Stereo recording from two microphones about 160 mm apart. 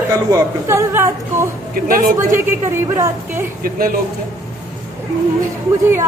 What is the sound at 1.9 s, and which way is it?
Speech, 60° right (ahead or behind).